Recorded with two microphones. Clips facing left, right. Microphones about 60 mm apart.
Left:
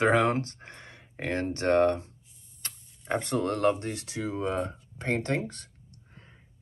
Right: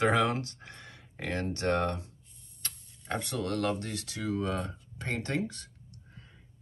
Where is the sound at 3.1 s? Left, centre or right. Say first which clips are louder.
Left 4 dB; left.